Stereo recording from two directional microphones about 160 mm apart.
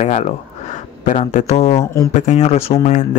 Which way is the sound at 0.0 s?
45° left (ahead or behind).